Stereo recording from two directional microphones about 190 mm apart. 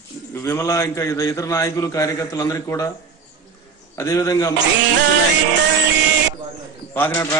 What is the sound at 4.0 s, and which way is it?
Speech, 15° left (ahead or behind).